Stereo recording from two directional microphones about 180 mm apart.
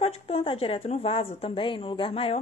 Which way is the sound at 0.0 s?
30° left (ahead or behind).